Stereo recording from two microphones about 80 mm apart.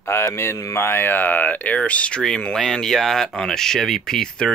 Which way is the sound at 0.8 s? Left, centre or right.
Left.